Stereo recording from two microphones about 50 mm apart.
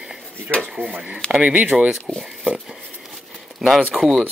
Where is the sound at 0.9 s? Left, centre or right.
Right.